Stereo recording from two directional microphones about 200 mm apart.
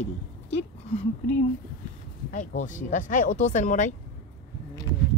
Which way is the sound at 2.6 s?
40° left (ahead or behind).